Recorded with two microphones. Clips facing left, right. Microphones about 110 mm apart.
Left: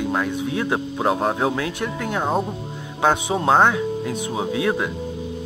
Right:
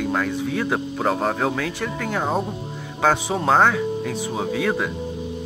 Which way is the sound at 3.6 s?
15° left (ahead or behind).